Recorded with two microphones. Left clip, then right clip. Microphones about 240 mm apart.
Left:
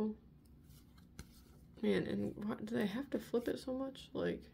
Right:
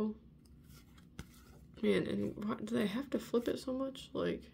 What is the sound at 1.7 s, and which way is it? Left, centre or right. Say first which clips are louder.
Speech: right 3 dB; centre.